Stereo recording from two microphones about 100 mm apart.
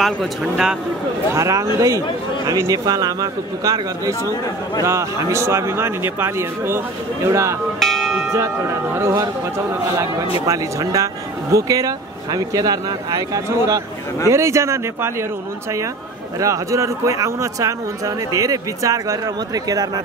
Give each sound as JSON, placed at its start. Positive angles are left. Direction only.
{"t": 0.0, "sound": "speech", "side_deg": 0}
{"t": 1.3, "sound": "speech", "side_deg": -30}
{"t": 7.8, "sound": "music", "side_deg": 0}
{"t": 8.3, "sound": "speech", "side_deg": -25}
{"t": 16.3, "sound": "speech", "side_deg": -30}